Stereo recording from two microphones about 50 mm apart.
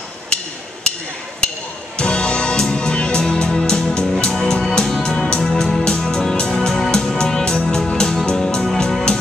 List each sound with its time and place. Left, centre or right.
2.0 s music: centre